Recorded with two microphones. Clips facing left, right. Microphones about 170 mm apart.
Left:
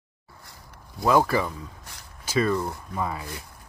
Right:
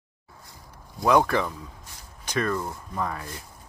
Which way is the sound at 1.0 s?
5° left (ahead or behind).